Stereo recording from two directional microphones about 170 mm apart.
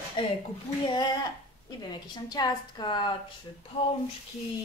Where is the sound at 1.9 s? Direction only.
25° left (ahead or behind).